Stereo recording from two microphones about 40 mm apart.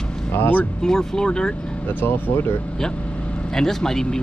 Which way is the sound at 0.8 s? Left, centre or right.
Centre.